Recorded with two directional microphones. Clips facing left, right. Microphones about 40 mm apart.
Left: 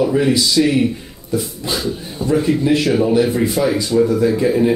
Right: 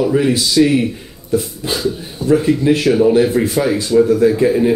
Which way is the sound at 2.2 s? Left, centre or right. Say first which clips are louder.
Right 5 dB; left.